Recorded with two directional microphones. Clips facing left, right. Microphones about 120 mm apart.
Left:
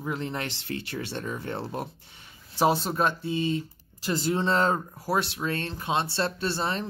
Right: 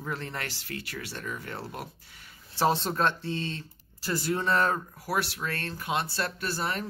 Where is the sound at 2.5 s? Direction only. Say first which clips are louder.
Left 2 dB; 10° left (ahead or behind).